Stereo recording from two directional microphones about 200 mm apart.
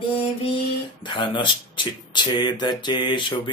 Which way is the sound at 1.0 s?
25° left (ahead or behind).